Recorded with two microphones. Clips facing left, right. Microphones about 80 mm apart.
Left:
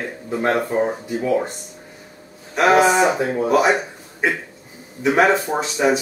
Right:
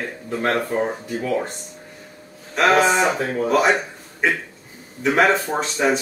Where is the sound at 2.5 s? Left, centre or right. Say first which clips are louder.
Left 2 dB; centre.